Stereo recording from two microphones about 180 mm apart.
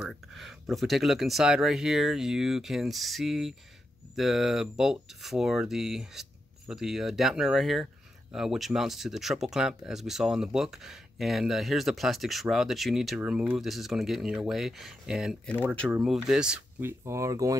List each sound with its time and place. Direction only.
0.0 s speech: centre (ahead or behind)
17.0 s speech: 15° right (ahead or behind)